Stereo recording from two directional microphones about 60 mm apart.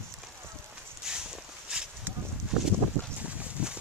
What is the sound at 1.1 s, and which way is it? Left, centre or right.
Walk, centre.